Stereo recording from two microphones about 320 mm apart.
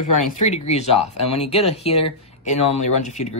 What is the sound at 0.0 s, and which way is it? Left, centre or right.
Speech, left.